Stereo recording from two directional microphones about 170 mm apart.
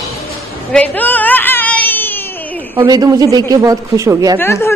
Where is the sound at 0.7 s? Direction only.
10° left (ahead or behind).